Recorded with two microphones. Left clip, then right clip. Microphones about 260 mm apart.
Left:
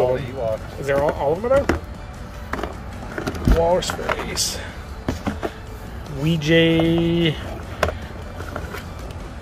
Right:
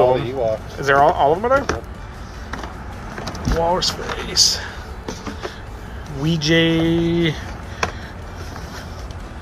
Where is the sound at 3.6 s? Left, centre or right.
Centre.